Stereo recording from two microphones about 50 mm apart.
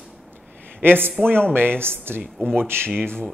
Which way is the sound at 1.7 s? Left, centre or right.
Left.